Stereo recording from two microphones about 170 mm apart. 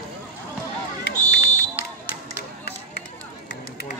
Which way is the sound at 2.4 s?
70° left (ahead or behind).